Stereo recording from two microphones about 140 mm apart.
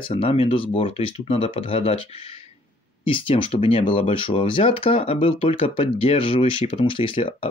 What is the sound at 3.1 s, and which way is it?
Speech, 40° left (ahead or behind).